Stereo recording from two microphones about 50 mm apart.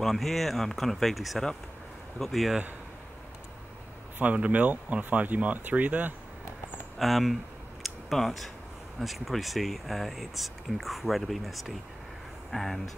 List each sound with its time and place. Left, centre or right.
0.0 s speech: centre
4.2 s speech: right
7.0 s speech: centre
7.8 s tick-tock: centre
9.0 s speech: centre